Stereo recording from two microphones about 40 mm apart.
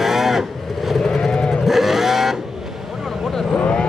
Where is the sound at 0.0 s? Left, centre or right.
Centre.